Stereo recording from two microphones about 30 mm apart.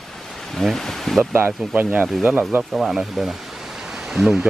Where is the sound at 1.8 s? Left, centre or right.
Right.